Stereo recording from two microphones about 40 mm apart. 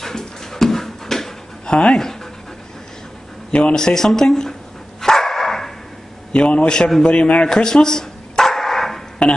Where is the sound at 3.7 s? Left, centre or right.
Centre.